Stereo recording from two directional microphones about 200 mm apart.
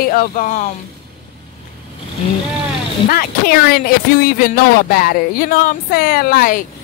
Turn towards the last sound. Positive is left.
turn(degrees=45)  # may be behind; listen again after turning